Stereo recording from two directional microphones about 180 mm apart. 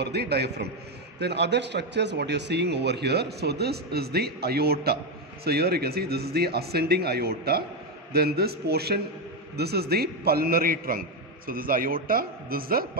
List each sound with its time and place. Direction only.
0.0 s a man's voice: 65° right (ahead or behind)